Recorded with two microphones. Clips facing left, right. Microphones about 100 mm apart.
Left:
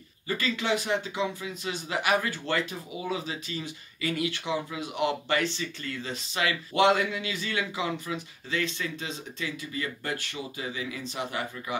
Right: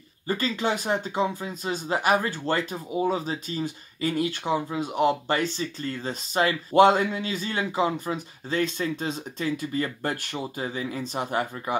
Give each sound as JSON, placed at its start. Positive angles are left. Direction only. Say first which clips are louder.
{"t": 0.3, "sound": "speech", "louder": "right 2 dB", "side_deg": -35}